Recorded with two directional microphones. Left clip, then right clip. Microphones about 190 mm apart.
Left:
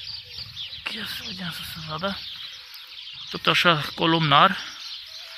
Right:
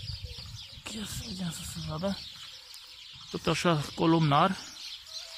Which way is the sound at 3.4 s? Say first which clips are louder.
Left 9 dB; 5° right (ahead or behind).